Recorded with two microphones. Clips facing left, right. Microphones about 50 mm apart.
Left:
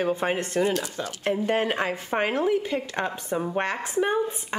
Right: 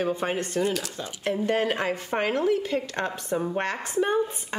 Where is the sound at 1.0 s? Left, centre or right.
Centre.